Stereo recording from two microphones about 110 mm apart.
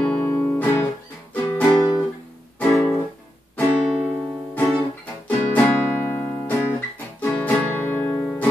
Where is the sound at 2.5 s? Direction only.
15° left (ahead or behind).